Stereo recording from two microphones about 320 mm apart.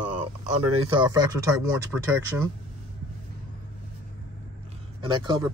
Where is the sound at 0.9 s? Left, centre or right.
Centre.